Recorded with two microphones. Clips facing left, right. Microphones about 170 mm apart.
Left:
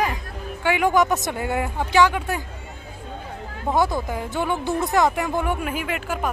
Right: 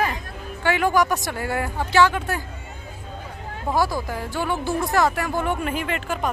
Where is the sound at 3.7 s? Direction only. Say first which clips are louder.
Left 1 dB; 20° left (ahead or behind).